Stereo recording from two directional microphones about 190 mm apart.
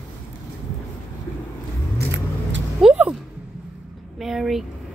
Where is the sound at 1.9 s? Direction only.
65° right (ahead or behind).